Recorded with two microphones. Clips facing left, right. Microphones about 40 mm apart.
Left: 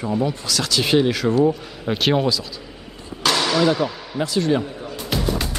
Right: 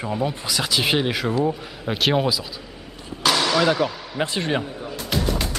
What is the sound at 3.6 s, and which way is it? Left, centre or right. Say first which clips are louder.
Speech: left 2 dB; centre.